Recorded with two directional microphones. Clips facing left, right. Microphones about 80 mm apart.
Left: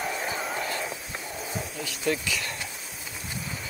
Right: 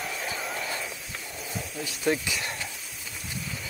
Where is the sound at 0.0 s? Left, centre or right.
Centre.